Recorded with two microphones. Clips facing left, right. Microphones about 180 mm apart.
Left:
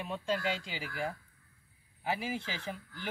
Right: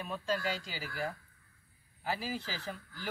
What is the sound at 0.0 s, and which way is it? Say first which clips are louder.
A man's voice: left 1 dB; 20° left (ahead or behind).